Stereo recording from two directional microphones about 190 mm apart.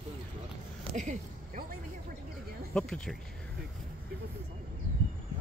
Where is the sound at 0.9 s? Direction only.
40° right (ahead or behind).